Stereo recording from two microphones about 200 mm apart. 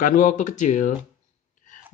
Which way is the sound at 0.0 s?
40° left (ahead or behind).